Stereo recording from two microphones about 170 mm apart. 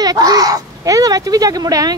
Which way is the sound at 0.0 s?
20° right (ahead or behind).